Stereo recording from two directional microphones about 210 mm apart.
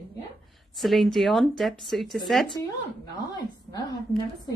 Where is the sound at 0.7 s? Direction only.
Centre (ahead or behind).